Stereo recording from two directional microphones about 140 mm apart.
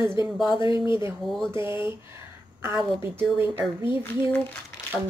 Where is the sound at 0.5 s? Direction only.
35° left (ahead or behind).